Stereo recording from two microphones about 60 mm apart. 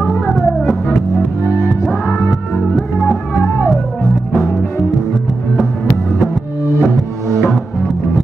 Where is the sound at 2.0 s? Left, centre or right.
Centre.